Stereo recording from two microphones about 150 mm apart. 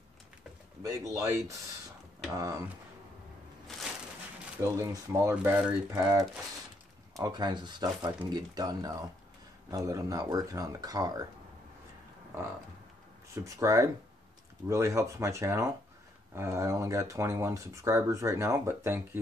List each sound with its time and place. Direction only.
0.8 s speech: 25° right (ahead or behind)
2.3 s speech: 20° right (ahead or behind)
4.6 s speech: 20° right (ahead or behind)
5.3 s speech: 10° right (ahead or behind)
5.9 s speech: 25° right (ahead or behind)
13.3 s speech: 20° right (ahead or behind)